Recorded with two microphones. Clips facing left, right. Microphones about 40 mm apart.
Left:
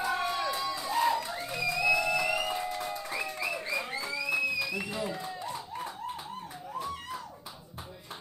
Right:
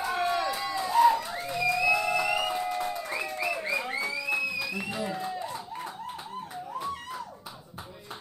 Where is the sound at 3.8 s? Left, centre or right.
Right.